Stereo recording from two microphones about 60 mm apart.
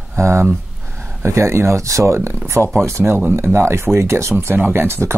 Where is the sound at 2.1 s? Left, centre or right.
Right.